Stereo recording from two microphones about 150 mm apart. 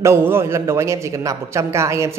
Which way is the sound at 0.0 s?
15° right (ahead or behind).